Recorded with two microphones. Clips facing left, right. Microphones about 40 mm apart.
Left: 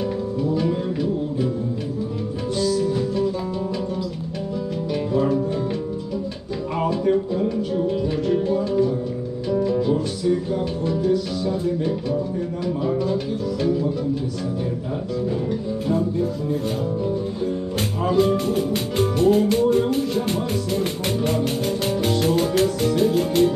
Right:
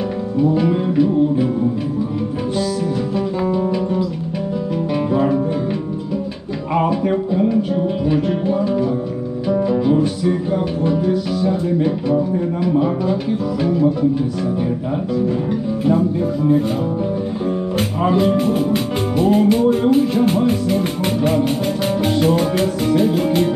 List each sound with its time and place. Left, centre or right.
0.4 s music: right
5.1 s music: right
6.8 s music: right
18.0 s music: centre